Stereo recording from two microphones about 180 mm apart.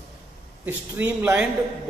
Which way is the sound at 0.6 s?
10° right (ahead or behind).